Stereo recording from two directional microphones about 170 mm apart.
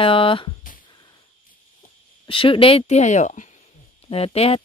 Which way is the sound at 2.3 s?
30° left (ahead or behind).